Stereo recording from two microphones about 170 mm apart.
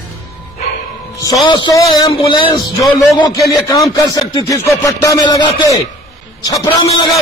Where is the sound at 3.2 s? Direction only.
25° left (ahead or behind).